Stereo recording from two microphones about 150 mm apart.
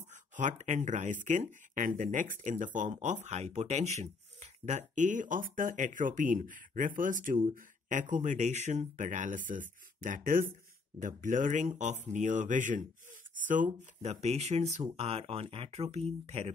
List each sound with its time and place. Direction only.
0.1 s speech: 55° right (ahead or behind)